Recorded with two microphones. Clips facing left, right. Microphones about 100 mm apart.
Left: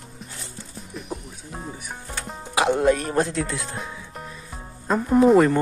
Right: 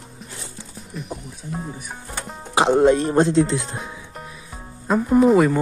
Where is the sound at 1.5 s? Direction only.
Centre (ahead or behind).